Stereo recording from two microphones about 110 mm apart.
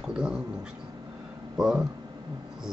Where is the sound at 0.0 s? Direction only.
5° right (ahead or behind).